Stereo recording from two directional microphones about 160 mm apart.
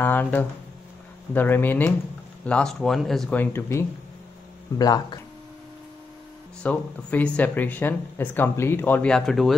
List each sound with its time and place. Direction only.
0.0 s speech: 10° left (ahead or behind)
6.6 s speech: 10° left (ahead or behind)